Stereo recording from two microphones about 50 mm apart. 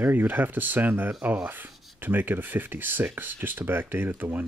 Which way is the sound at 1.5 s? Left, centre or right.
Right.